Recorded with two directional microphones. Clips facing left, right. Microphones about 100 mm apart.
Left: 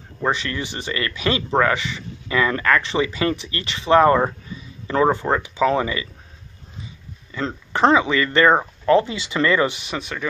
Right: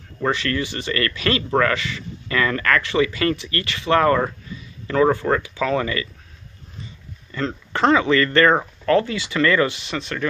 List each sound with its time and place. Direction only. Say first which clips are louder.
0.2 s speech: right 1 dB; 15° left (ahead or behind)
7.3 s speech: even; 20° left (ahead or behind)